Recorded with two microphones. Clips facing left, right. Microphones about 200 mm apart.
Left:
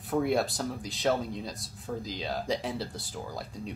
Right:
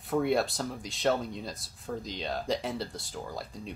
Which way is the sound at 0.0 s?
Centre (ahead or behind).